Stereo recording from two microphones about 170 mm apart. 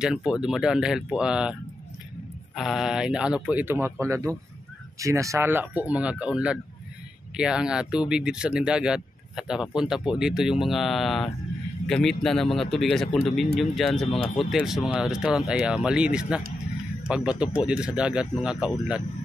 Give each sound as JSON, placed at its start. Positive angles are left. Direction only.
{"t": 0.0, "sound": "speech", "side_deg": -5}